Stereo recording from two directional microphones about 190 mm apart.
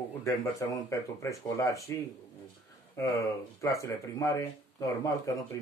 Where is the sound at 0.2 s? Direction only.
15° left (ahead or behind).